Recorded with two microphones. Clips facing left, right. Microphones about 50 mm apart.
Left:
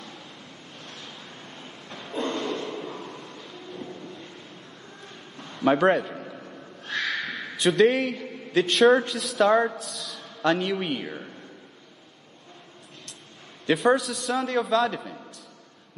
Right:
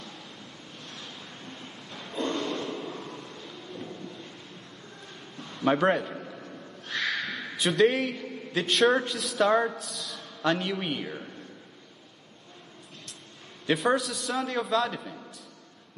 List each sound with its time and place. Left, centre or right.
2.2 s a sound: centre
5.6 s a man's voice: centre
7.2 s a man's voice: centre
13.7 s a man's voice: centre